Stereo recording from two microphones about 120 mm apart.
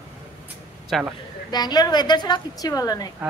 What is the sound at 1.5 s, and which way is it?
A woman's voice, 35° left (ahead or behind).